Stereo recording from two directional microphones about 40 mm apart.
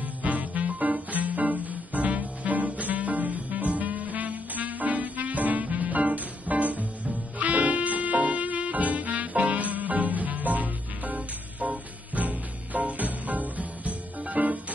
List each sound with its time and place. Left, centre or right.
0.2 s music: right